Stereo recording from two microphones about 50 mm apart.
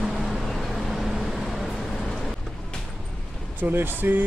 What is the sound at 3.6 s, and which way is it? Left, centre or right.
Speech, right.